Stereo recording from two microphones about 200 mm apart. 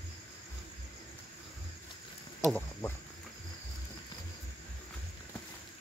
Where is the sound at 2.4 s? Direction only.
10° left (ahead or behind).